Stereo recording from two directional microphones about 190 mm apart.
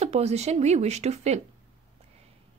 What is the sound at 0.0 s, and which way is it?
Speech, 35° right (ahead or behind).